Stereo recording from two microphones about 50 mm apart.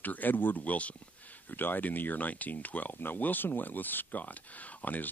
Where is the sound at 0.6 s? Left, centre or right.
Left.